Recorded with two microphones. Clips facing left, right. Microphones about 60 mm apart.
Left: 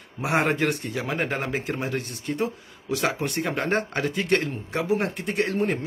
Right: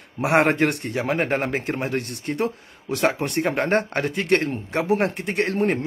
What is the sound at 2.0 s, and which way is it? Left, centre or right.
Speech, right.